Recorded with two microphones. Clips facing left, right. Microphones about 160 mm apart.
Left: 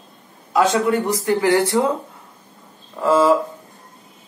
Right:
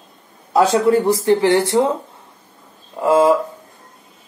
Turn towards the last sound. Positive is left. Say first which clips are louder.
# right 2 dB
turn(degrees=-15)  # may be behind; listen again after turning